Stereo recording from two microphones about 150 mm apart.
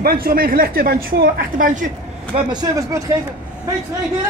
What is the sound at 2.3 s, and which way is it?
Speech, 30° right (ahead or behind).